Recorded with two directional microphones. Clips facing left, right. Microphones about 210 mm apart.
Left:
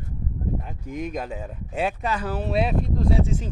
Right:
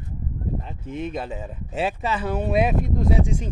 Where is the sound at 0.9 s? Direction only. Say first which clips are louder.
Right 1 dB; 10° left (ahead or behind).